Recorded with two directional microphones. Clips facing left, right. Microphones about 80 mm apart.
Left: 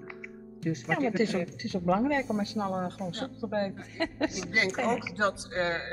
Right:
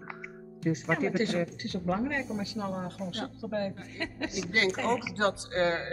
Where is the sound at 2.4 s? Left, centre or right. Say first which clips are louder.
Left 4 dB; left.